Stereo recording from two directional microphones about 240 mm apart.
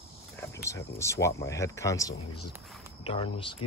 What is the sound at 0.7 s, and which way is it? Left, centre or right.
Speech, centre.